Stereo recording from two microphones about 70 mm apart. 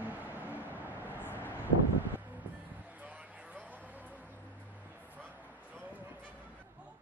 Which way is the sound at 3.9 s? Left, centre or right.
Right.